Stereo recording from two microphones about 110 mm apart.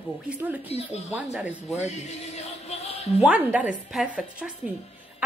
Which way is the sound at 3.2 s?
10° right (ahead or behind).